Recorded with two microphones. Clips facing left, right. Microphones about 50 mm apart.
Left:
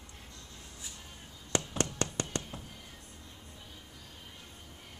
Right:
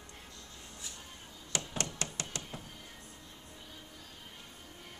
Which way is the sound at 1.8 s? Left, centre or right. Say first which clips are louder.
Left 6 dB; left.